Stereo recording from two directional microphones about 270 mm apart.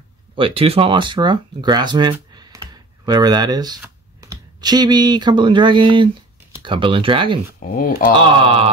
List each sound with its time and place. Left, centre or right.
0.4 s speech: right
7.7 s speech: left
8.4 s speech: centre